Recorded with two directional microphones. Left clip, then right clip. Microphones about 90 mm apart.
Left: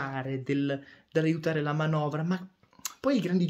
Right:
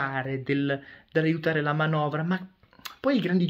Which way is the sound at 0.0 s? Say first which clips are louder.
Right 5 dB; 25° left (ahead or behind).